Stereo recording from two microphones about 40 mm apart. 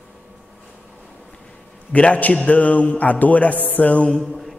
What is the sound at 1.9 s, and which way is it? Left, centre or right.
A woman's voice, left.